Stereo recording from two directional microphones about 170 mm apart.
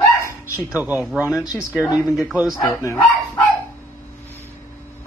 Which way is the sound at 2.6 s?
15° left (ahead or behind).